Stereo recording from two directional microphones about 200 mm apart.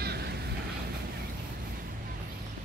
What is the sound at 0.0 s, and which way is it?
Vehicle, 55° right (ahead or behind).